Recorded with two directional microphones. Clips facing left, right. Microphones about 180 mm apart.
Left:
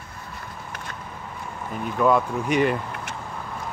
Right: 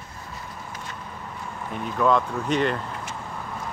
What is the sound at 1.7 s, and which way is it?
Speech, 5° left (ahead or behind).